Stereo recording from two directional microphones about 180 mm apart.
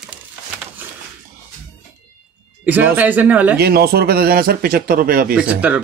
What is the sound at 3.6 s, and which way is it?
Speech, 60° right (ahead or behind).